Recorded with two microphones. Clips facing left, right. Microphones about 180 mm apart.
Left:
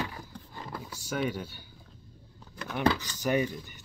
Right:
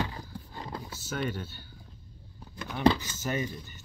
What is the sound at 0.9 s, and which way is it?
Speech, 15° left (ahead or behind).